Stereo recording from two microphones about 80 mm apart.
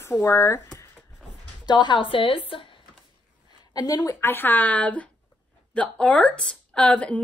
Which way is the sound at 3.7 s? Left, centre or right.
Left.